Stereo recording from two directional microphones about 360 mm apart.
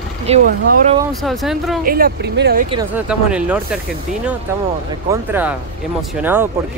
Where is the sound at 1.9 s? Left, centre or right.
Right.